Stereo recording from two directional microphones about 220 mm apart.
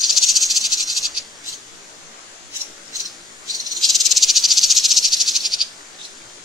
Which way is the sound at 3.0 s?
Centre (ahead or behind).